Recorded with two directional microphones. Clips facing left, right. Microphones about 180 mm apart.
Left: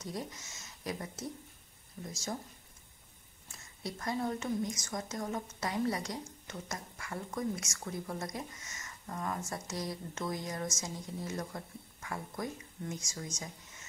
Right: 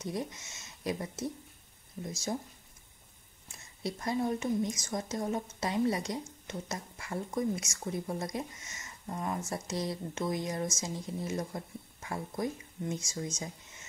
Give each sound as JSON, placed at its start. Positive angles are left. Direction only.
{"t": 0.0, "sound": "a woman's voice", "side_deg": -25}
{"t": 3.8, "sound": "a woman's voice", "side_deg": -20}